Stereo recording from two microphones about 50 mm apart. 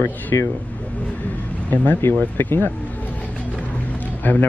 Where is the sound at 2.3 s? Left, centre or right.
Left.